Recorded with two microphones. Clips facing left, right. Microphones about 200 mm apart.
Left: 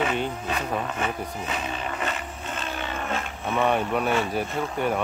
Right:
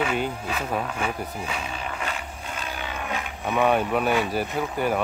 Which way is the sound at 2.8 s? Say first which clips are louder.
Left 1 dB; centre (ahead or behind).